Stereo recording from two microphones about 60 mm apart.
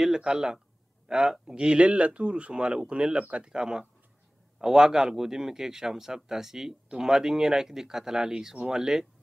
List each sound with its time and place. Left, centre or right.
0.0 s speech: centre